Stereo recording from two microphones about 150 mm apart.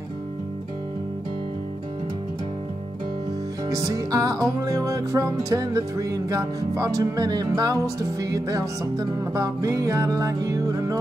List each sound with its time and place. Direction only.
3.6 s music: 20° right (ahead or behind)